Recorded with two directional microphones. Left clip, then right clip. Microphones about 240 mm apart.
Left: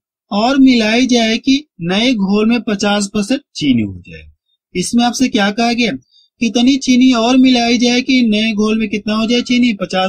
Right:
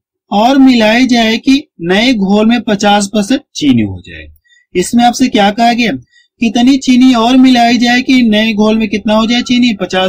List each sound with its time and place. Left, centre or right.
0.3 s speech: left
4.7 s speech: left